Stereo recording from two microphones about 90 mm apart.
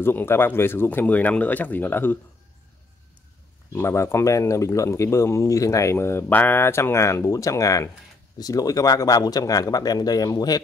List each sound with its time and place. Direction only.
0.0 s speech: 25° left (ahead or behind)
3.7 s speech: 35° left (ahead or behind)